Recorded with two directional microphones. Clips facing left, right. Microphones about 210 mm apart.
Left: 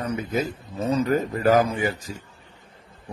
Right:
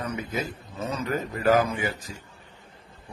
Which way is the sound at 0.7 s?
35° left (ahead or behind).